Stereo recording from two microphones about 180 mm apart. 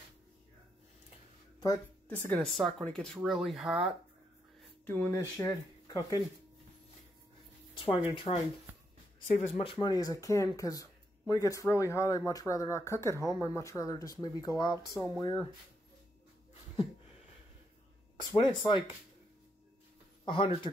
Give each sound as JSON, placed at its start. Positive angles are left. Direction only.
{"t": 1.6, "sound": "speech", "side_deg": 15}
{"t": 4.8, "sound": "speech", "side_deg": 15}
{"t": 7.7, "sound": "speech", "side_deg": 30}
{"t": 18.3, "sound": "speech", "side_deg": 25}
{"t": 20.2, "sound": "speech", "side_deg": 25}